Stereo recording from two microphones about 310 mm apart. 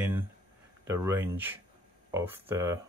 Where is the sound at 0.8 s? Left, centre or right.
Centre.